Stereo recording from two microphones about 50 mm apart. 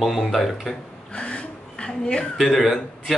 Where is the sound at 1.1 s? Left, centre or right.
Left.